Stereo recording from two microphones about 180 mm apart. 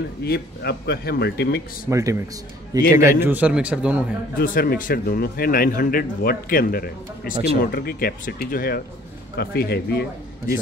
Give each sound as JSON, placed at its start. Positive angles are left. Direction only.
{"t": 0.2, "sound": "speech", "side_deg": 65}
{"t": 1.9, "sound": "a man's voice", "side_deg": -15}
{"t": 4.4, "sound": "speech", "side_deg": 55}